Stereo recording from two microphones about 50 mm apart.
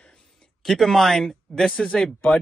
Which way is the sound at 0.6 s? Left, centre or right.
Centre.